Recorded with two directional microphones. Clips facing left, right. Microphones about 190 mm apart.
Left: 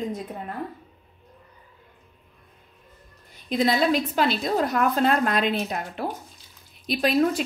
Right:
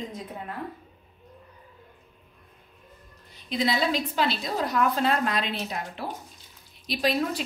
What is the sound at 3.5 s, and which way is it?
A woman's voice, 50° left (ahead or behind).